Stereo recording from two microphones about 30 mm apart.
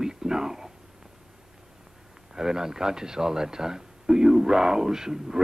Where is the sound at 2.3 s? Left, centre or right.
Centre.